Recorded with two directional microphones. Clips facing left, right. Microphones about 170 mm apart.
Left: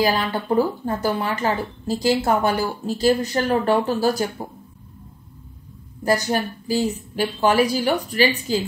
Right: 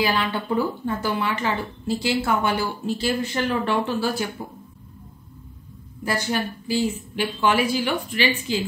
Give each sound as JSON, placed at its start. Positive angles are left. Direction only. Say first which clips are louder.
{"t": 0.0, "sound": "speech", "louder": "left 2 dB", "side_deg": 40}
{"t": 6.0, "sound": "speech", "louder": "left 4 dB", "side_deg": 40}